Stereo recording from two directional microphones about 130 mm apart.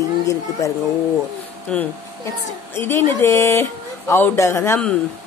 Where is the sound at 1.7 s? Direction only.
10° left (ahead or behind).